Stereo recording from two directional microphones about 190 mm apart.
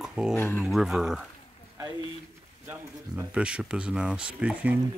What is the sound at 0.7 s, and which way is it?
Speech, centre (ahead or behind).